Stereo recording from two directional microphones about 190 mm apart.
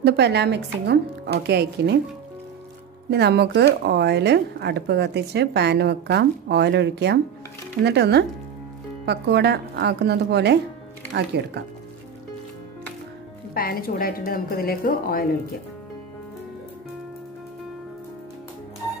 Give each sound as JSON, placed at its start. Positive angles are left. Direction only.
{"t": 0.0, "sound": "a woman's voice", "side_deg": -60}
{"t": 3.1, "sound": "a woman's voice", "side_deg": -60}
{"t": 13.6, "sound": "a woman's voice", "side_deg": 50}